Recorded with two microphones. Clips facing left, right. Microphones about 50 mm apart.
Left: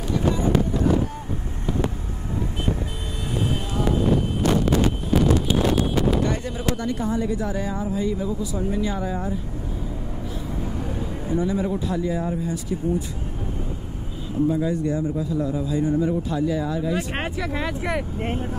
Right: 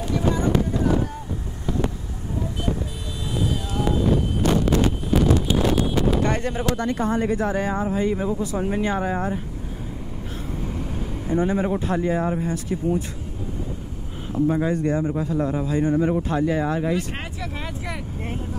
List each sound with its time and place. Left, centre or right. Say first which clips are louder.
6.2 s speech: right 2 dB; right
11.3 s speech: right 2 dB; right
14.5 s speech: right 1 dB; right
16.9 s speech: left 1 dB; left
17.4 s speech: left 5 dB; left